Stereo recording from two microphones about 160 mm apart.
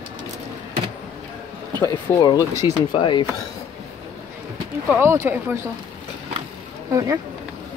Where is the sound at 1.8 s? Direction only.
20° left (ahead or behind).